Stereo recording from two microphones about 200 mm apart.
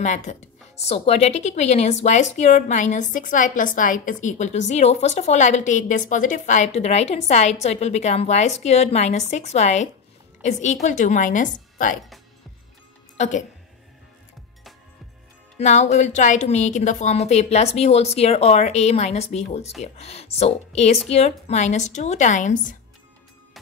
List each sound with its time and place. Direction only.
0.0 s a woman's voice: 35° left (ahead or behind)
15.5 s a woman's voice: 35° left (ahead or behind)